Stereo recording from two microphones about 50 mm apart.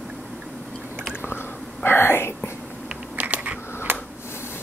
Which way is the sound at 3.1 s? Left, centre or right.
Right.